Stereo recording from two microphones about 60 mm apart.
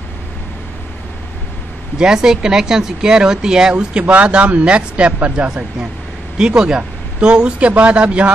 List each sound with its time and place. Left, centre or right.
2.0 s speech: centre